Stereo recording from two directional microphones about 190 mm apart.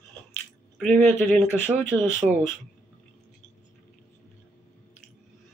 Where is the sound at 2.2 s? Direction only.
40° right (ahead or behind).